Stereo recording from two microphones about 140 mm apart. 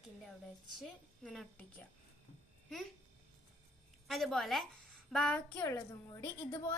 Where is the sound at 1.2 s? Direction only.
Centre (ahead or behind).